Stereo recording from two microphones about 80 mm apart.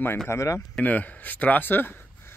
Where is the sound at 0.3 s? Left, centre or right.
Left.